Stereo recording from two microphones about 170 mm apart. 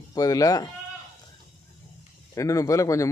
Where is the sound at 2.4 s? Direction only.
20° left (ahead or behind).